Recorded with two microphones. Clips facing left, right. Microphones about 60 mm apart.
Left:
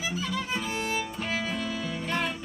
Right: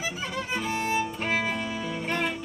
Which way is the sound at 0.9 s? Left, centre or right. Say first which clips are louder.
Right 4 dB; right.